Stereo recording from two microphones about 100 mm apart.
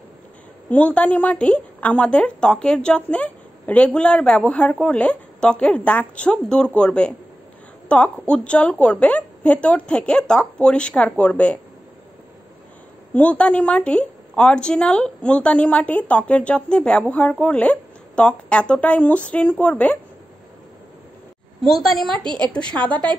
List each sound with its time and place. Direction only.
0.7 s a woman's voice: 15° left (ahead or behind)
13.1 s a woman's voice: 15° left (ahead or behind)
21.6 s a woman's voice: centre (ahead or behind)